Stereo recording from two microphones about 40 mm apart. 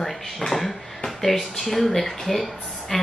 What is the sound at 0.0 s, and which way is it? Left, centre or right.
A woman's voice, centre.